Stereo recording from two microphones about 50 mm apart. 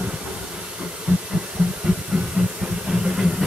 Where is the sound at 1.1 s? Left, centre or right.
Right.